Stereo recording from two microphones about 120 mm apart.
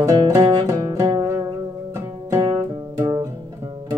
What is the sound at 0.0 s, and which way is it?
Music, 25° right (ahead or behind).